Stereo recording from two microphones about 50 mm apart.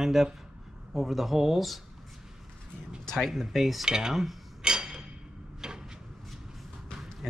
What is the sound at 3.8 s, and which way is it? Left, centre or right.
Speech, centre.